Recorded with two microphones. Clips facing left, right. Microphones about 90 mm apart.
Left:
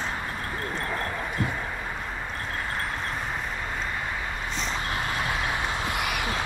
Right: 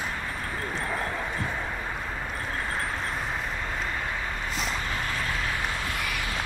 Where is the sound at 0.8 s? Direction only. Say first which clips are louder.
Right 1 dB; 5° right (ahead or behind).